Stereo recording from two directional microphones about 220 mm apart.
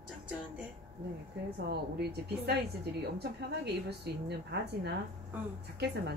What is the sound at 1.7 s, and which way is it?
Speech, 50° right (ahead or behind).